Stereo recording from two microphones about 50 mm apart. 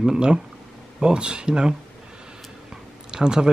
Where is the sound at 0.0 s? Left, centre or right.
Centre.